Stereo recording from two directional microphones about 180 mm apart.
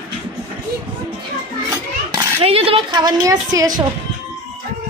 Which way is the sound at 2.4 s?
30° right (ahead or behind).